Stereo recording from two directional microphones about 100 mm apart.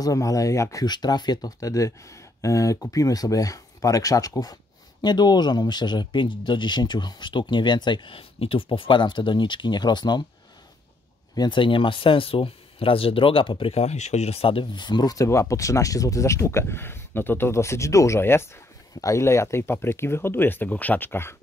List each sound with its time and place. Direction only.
0.0 s speech: 35° left (ahead or behind)
0.8 s speech: 45° left (ahead or behind)
11.3 s speech: 55° left (ahead or behind)
15.2 s speech: 30° left (ahead or behind)